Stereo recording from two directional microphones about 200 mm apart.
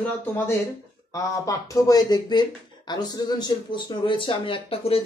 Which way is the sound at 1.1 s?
15° left (ahead or behind).